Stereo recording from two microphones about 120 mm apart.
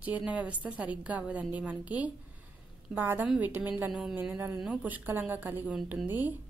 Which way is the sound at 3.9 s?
5° right (ahead or behind).